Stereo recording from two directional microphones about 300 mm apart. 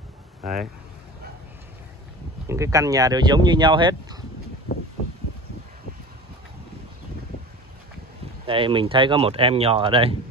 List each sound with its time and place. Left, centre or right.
0.4 s speech: centre
2.4 s speech: centre
8.5 s speech: centre